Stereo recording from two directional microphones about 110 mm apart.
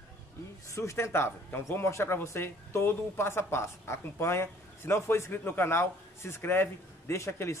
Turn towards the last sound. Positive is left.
turn(degrees=25)  # may be behind; listen again after turning